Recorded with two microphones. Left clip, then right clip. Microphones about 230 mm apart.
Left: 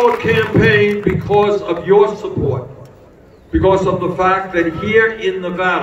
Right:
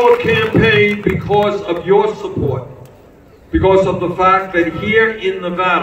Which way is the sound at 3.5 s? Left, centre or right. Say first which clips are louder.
Right 1 dB; centre.